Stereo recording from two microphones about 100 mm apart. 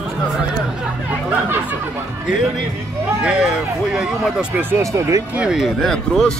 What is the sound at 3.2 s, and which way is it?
Speech, 10° right (ahead or behind).